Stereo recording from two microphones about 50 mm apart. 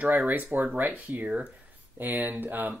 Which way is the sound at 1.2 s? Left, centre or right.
Right.